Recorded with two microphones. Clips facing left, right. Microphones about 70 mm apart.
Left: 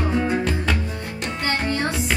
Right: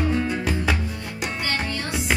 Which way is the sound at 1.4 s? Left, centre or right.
Left.